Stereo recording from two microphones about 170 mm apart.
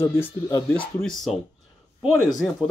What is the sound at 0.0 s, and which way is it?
Speech, 15° left (ahead or behind).